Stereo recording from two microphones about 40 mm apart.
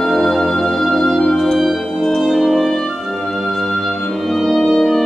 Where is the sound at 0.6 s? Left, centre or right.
Left.